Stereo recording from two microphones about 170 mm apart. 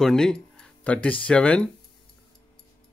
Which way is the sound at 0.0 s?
5° left (ahead or behind).